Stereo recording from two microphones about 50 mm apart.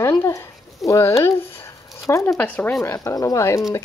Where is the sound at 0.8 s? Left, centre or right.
Left.